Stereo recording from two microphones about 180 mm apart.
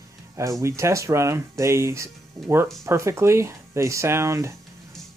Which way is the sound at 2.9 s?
15° right (ahead or behind).